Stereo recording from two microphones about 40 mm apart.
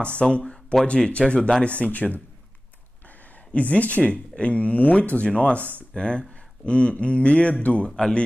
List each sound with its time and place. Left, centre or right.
0.2 s speech: left
3.5 s speech: left